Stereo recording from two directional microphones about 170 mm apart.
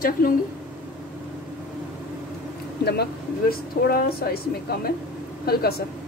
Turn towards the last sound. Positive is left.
turn(degrees=65)  # may be behind; listen again after turning